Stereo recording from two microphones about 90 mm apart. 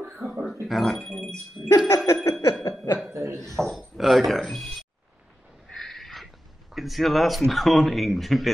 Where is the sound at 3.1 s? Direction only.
35° right (ahead or behind).